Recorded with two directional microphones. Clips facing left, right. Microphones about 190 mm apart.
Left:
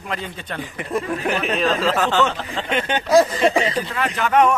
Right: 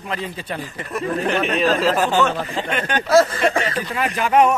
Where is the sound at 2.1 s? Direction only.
15° right (ahead or behind).